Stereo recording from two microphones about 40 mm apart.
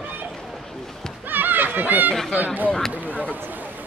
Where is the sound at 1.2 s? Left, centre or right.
Right.